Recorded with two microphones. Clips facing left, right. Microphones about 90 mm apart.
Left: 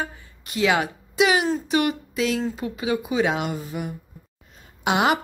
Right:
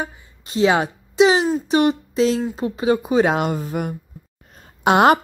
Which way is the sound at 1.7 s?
25° right (ahead or behind).